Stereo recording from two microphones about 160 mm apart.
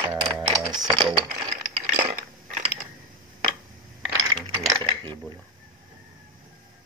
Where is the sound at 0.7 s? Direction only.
25° right (ahead or behind).